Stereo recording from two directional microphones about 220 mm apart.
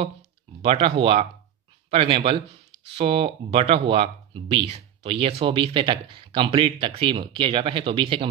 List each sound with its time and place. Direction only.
0.6 s speech: 25° right (ahead or behind)